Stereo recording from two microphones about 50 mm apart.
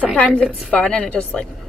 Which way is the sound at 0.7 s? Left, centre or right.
Left.